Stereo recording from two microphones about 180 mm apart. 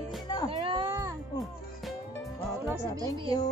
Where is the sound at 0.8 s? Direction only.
15° right (ahead or behind).